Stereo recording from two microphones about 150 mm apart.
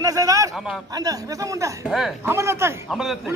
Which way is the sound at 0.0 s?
25° right (ahead or behind).